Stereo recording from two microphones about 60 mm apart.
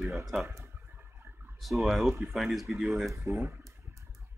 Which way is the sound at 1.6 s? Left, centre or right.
Centre.